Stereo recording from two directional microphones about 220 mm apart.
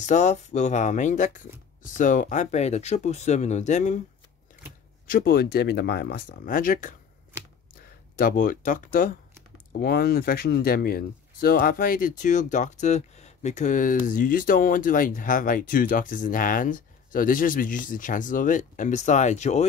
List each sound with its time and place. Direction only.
0.0 s speech: 30° left (ahead or behind)
5.1 s speech: 40° left (ahead or behind)
8.2 s speech: 40° left (ahead or behind)